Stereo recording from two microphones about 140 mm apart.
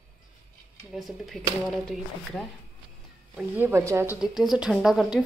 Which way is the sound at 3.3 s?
15° right (ahead or behind).